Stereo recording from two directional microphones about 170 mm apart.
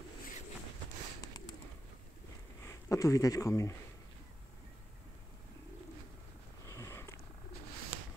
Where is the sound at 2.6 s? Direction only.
20° left (ahead or behind).